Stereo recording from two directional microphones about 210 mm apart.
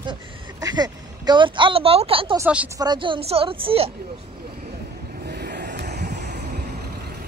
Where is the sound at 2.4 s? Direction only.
5° right (ahead or behind).